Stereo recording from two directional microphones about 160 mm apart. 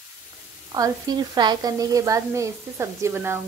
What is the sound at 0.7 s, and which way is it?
A woman's voice, 20° right (ahead or behind).